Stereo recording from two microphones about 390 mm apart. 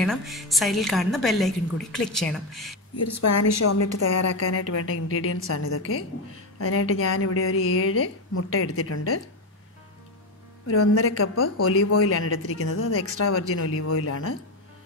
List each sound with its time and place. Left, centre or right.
0.0 s a woman's voice: centre
3.2 s a woman's voice: left
10.7 s a woman's voice: left